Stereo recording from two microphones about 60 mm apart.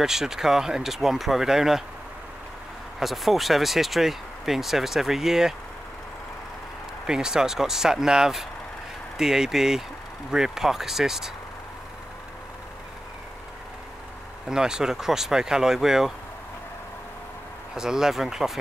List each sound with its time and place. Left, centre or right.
0.0 s speech: centre
3.0 s speech: centre
7.1 s speech: centre
14.5 s speech: centre
17.7 s speech: centre